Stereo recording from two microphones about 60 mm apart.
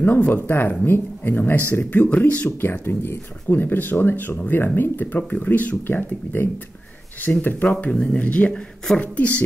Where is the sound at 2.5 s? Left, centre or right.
Left.